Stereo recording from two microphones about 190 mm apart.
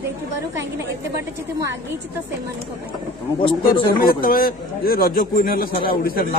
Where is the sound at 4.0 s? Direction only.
50° left (ahead or behind).